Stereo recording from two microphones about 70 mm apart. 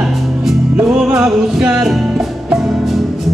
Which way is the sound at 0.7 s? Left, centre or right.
Centre.